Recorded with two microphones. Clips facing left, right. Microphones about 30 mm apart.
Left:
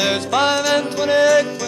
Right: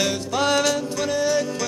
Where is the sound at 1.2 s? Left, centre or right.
Left.